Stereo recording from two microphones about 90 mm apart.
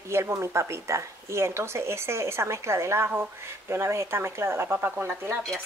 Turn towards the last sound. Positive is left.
turn(degrees=-30)  # may be behind; listen again after turning